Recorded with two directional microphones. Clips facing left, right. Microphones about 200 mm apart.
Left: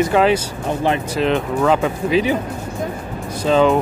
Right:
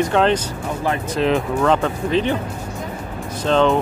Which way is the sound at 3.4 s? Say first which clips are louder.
Left 2 dB; 5° left (ahead or behind).